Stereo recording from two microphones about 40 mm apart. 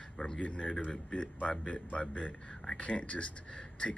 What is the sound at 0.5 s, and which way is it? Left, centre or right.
Speech, left.